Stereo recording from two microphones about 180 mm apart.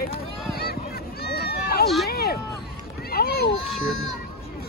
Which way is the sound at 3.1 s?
60° left (ahead or behind).